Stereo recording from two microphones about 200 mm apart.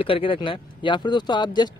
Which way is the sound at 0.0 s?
25° left (ahead or behind).